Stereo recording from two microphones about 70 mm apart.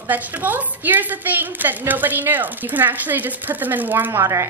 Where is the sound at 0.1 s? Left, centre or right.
Right.